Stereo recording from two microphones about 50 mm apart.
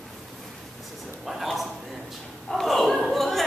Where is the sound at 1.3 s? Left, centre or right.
Centre.